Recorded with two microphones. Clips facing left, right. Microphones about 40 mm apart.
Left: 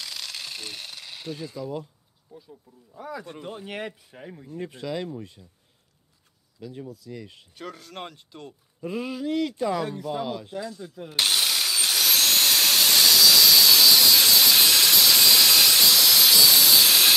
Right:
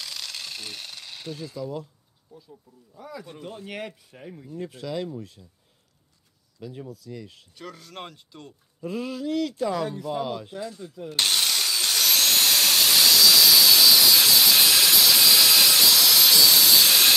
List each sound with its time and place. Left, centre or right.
0.0 s tools: centre
2.3 s speech: centre
6.6 s speech: centre
11.1 s drill: centre